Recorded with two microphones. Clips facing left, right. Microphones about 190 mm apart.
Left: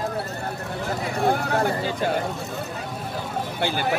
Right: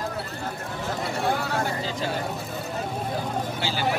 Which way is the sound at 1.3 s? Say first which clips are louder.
Left 4 dB; 55° left (ahead or behind).